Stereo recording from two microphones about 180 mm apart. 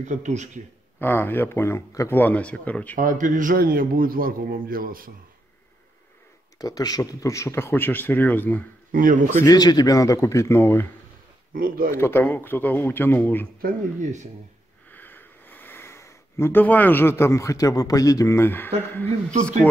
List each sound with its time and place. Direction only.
0.0 s speech: 45° right (ahead or behind)
0.9 s speech: 10° left (ahead or behind)
3.0 s speech: 45° right (ahead or behind)
6.6 s speech: 20° left (ahead or behind)
8.9 s speech: 45° right (ahead or behind)
9.4 s speech: 20° left (ahead or behind)
11.5 s speech: 50° right (ahead or behind)
11.9 s speech: 15° left (ahead or behind)
13.6 s speech: 50° right (ahead or behind)
14.9 s a sound: 10° left (ahead or behind)